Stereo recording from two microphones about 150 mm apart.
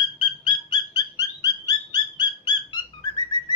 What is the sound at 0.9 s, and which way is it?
Music, 25° left (ahead or behind).